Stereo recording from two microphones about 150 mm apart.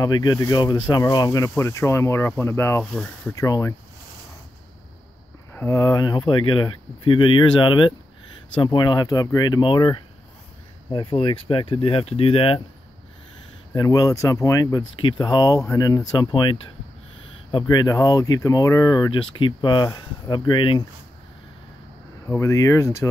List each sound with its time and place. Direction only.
0.0 s speech: 25° left (ahead or behind)
2.8 s speech: 5° left (ahead or behind)
3.3 s speech: 20° left (ahead or behind)
5.5 s speech: 15° left (ahead or behind); by 12.6 s 40° left (ahead or behind)
13.7 s speech: 25° left (ahead or behind)
22.3 s speech: 20° left (ahead or behind)